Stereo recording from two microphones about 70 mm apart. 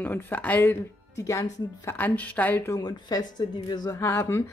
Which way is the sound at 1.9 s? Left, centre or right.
Left.